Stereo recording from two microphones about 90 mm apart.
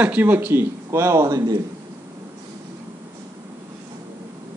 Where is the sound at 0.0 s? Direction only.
20° right (ahead or behind); by 1.6 s 40° right (ahead or behind).